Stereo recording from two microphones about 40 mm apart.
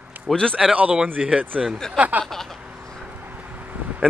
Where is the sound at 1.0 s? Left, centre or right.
Right.